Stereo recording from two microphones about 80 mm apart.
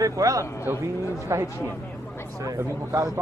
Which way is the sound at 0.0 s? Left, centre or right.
Right.